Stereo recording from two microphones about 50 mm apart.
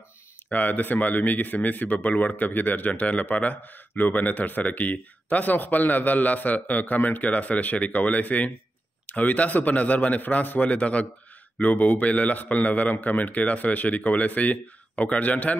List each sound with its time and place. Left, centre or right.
0.5 s speech: left